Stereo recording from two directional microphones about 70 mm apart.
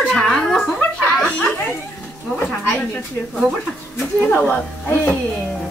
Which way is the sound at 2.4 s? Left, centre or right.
Centre.